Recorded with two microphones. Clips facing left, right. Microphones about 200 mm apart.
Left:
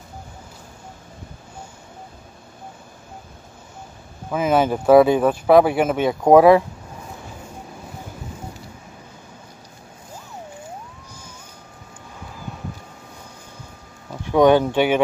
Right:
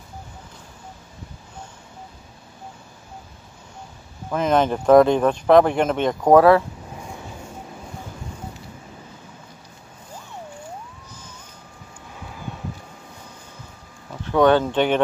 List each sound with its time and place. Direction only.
4.3 s speech: 5° left (ahead or behind)
14.2 s speech: 15° left (ahead or behind)